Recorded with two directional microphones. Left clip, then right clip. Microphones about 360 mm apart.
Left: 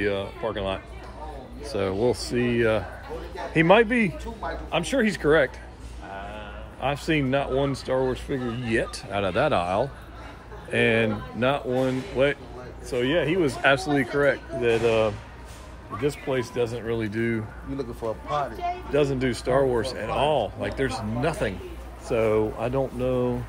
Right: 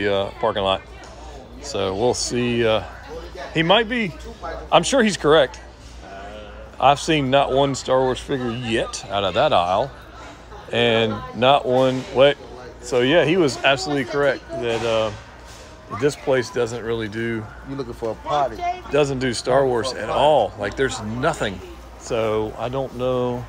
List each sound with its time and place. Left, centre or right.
0.0 s speech: centre
4.6 s speech: centre
6.8 s speech: centre
13.6 s speech: centre
16.0 s speech: centre
17.7 s speech: right
18.9 s speech: centre